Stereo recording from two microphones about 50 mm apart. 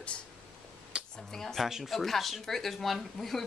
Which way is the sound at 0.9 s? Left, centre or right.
Centre.